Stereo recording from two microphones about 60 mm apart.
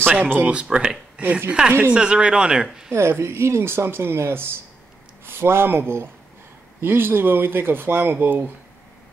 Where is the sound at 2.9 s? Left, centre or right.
Right.